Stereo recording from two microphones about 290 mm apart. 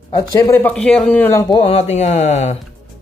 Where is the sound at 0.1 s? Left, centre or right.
Centre.